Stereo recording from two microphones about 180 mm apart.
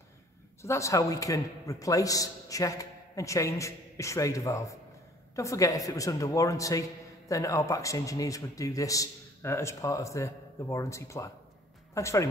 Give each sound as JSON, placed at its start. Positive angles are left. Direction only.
{"t": 0.6, "sound": "a man's voice", "side_deg": 15}